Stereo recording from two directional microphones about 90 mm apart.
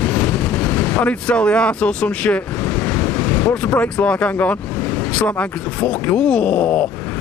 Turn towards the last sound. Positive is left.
turn(degrees=15)  # may be behind; listen again after turning